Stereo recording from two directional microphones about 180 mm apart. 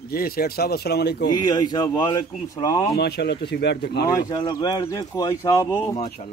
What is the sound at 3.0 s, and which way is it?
Speech, 65° left (ahead or behind).